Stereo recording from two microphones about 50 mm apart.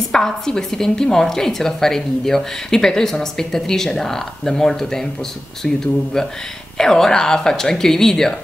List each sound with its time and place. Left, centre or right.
0.1 s speech: centre